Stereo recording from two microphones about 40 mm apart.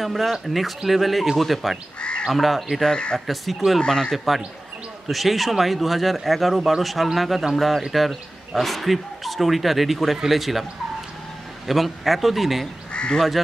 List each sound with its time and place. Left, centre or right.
0.0 s speech: centre
2.0 s crow: left
2.2 s speech: centre
2.8 s speech: left
3.3 s speech: centre
3.8 s speech: centre
4.1 s speech: centre
12.9 s crow: left